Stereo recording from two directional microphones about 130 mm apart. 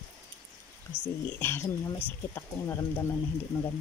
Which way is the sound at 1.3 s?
20° left (ahead or behind).